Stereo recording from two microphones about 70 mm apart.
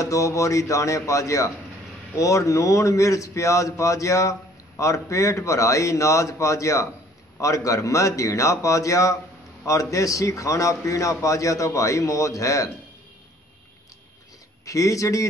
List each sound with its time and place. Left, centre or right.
0.0 s speech: left
14.6 s speech: left